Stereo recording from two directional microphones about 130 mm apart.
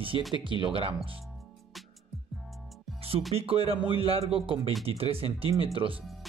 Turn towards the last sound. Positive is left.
turn(degrees=-45)  # may be behind; listen again after turning